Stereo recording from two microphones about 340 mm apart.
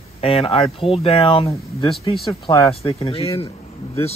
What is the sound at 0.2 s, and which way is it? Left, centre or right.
Speech, centre.